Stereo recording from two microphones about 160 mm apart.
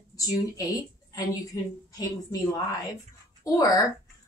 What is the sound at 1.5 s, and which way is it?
A woman's voice, 20° left (ahead or behind).